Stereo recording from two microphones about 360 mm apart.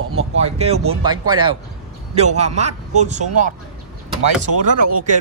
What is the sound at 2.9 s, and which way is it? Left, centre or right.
Speech, centre.